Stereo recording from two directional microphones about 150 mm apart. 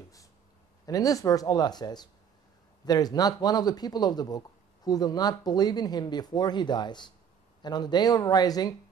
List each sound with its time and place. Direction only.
0.8 s speech: 25° left (ahead or behind)